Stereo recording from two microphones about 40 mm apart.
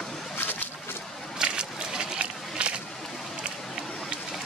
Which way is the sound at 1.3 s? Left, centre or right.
Right.